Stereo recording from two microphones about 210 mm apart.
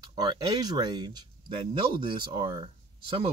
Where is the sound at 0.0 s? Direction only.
20° right (ahead or behind).